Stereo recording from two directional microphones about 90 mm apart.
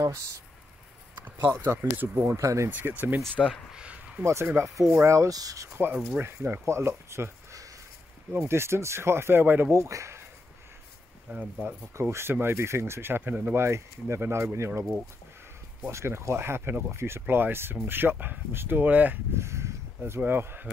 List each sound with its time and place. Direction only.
1.4 s speech: 30° right (ahead or behind)
2.4 s speech: 35° right (ahead or behind)
2.7 s speech: 20° right (ahead or behind)
3.3 s speech: 10° left (ahead or behind)
3.7 s a sound: 15° right (ahead or behind)
4.2 s speech: 30° right (ahead or behind)
11.3 s speech: 20° right (ahead or behind)
15.9 s speech: 30° right (ahead or behind)
19.3 s speech: 30° right (ahead or behind)
20.0 s speech: 20° right (ahead or behind)